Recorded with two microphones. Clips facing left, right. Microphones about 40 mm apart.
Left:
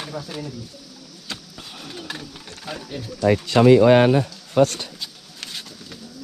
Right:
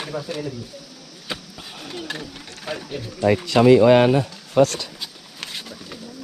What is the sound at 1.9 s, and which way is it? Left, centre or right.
Speech, right.